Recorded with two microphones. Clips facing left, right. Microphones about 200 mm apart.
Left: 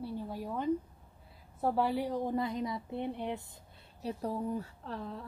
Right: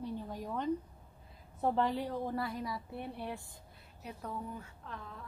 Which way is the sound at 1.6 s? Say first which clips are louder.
Left 1 dB; 10° left (ahead or behind).